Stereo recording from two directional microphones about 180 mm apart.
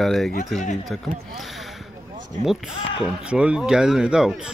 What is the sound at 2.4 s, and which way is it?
Speech, centre (ahead or behind).